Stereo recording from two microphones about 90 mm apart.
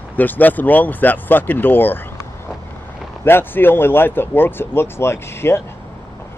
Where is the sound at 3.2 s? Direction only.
25° left (ahead or behind).